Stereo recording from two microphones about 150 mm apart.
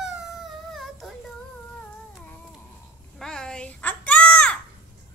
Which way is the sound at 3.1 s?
5° left (ahead or behind).